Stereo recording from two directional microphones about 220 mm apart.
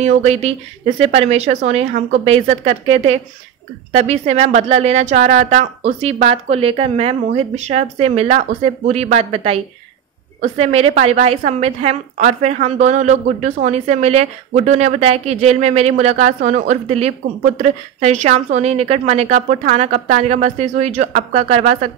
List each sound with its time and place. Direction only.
0.0 s a woman's voice: 30° right (ahead or behind)